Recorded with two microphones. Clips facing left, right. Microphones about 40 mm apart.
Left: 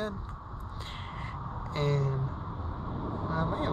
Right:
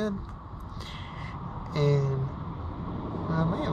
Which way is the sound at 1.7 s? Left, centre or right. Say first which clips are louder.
Right 4 dB; left.